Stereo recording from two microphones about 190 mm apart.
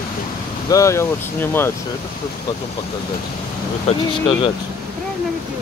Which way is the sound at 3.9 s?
35° left (ahead or behind).